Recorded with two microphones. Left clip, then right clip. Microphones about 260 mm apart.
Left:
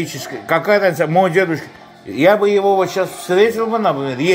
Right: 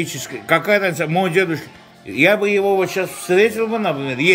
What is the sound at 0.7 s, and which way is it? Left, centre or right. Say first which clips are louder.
A man's voice: left 4 dB; centre.